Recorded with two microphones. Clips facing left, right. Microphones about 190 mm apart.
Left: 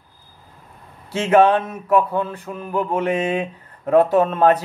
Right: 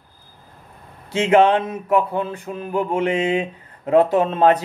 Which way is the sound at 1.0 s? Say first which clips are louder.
Even; 15° right (ahead or behind).